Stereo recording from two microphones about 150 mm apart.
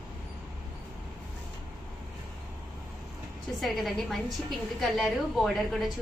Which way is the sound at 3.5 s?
Centre (ahead or behind).